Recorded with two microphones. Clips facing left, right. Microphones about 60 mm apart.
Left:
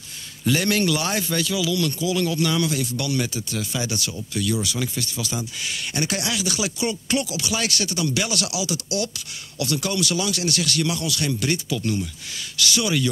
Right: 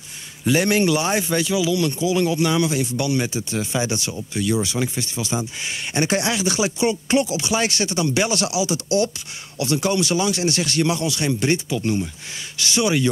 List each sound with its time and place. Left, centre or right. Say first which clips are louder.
0.5 s speech: right 3 dB; right